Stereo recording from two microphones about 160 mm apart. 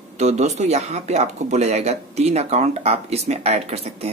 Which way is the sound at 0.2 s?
45° right (ahead or behind).